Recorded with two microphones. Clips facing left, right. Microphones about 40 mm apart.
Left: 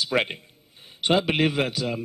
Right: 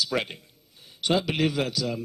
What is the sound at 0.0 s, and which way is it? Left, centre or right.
Speech, left.